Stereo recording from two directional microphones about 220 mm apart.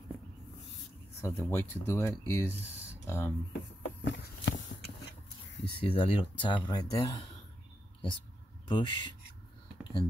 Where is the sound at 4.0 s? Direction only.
55° left (ahead or behind).